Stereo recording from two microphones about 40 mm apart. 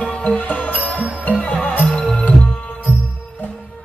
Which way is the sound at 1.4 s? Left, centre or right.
Left.